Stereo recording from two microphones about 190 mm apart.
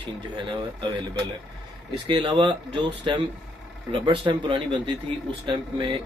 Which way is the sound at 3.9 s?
25° right (ahead or behind).